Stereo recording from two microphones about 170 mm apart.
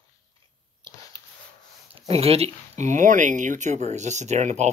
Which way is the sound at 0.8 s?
25° right (ahead or behind).